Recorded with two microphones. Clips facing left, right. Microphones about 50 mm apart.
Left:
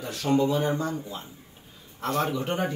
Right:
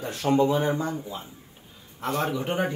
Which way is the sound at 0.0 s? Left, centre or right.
Right.